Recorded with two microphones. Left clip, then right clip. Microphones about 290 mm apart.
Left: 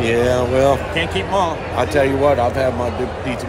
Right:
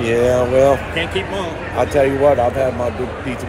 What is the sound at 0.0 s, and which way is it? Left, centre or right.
Speech, centre.